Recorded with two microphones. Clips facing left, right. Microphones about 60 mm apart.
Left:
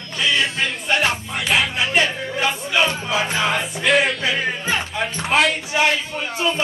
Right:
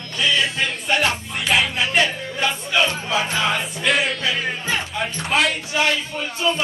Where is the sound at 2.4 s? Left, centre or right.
Centre.